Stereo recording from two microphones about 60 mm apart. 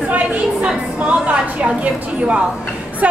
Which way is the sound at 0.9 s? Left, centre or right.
Right.